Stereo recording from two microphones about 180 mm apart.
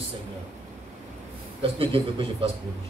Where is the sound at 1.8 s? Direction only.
30° right (ahead or behind).